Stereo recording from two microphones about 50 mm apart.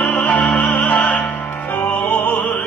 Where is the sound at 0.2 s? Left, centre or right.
Left.